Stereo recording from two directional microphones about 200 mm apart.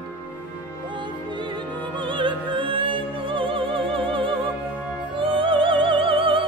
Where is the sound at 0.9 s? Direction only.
25° right (ahead or behind).